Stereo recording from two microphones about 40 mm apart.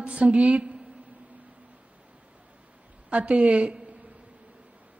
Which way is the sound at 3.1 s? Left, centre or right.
Right.